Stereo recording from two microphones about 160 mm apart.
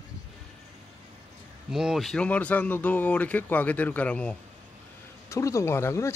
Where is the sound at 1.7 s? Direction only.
Centre (ahead or behind).